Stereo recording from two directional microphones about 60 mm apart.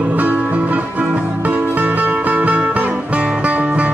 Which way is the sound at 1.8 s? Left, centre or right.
Right.